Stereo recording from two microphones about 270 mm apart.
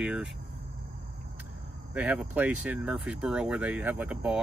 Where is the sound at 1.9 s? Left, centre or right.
Centre.